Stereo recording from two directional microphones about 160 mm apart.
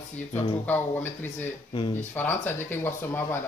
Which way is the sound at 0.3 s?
15° left (ahead or behind).